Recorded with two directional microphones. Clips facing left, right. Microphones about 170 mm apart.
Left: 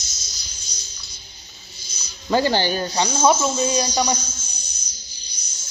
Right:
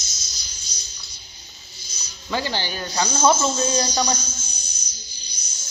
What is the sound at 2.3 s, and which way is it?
Speech, 50° left (ahead or behind).